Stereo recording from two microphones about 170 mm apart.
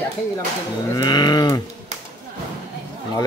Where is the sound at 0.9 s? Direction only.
25° left (ahead or behind).